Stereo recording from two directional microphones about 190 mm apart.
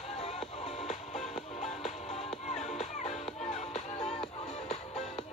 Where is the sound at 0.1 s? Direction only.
35° left (ahead or behind).